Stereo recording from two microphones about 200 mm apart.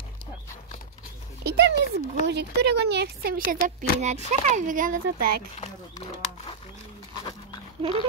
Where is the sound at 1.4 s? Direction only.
55° right (ahead or behind).